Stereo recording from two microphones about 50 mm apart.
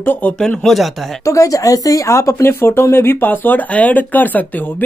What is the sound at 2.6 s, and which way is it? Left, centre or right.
A woman's voice, left.